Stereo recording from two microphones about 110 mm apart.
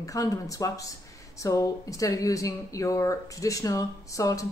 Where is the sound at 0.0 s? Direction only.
30° left (ahead or behind).